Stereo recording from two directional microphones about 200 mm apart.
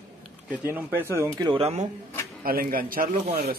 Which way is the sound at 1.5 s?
30° right (ahead or behind).